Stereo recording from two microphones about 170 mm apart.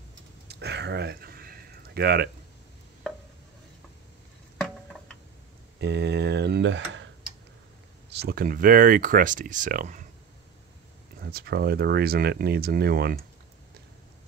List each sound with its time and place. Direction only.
0.5 s a sound: 75° right (ahead or behind)
5.8 s speech: 90° right
8.1 s speech: 65° right (ahead or behind); by 10.0 s 50° right (ahead or behind)
11.1 s speech: 65° right (ahead or behind)